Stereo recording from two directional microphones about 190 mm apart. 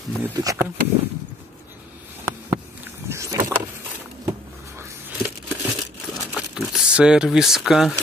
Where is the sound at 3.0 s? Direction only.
15° right (ahead or behind).